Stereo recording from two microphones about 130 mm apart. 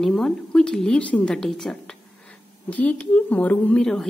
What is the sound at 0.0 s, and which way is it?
A woman's voice, 5° left (ahead or behind).